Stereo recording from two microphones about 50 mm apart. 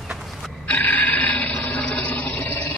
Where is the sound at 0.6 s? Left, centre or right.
Left.